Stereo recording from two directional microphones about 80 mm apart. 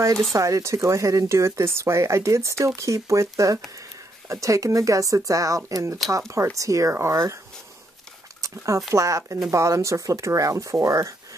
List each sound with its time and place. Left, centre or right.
0.3 s speech: right
8.4 s a sound: right
8.9 s speech: right